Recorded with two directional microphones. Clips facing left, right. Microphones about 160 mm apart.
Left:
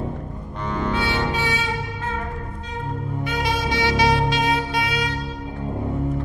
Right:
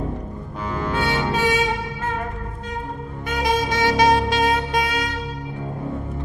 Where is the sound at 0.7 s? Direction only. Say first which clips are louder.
Left 1 dB; 5° right (ahead or behind).